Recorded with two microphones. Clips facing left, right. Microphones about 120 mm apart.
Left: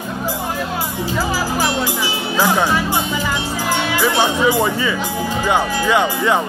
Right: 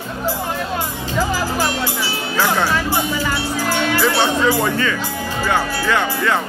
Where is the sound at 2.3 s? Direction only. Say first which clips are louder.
Left 2 dB; 15° left (ahead or behind).